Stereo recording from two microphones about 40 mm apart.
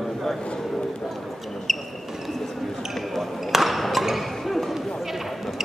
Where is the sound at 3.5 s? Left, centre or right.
Centre.